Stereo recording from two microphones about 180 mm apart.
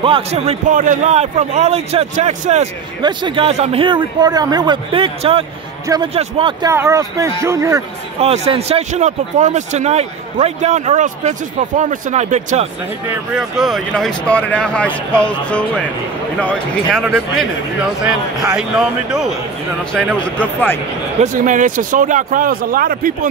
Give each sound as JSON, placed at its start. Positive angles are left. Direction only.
{"t": 0.0, "sound": "speech", "side_deg": -30}
{"t": 3.0, "sound": "speech", "side_deg": -25}
{"t": 6.7, "sound": "speech", "side_deg": -15}
{"t": 8.2, "sound": "speech", "side_deg": -35}
{"t": 13.3, "sound": "speech", "side_deg": 0}
{"t": 18.6, "sound": "speech", "side_deg": -5}
{"t": 20.3, "sound": "speech", "side_deg": 10}
{"t": 21.2, "sound": "speech", "side_deg": -45}